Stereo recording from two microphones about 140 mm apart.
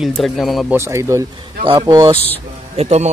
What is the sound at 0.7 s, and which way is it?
Speech, 20° right (ahead or behind).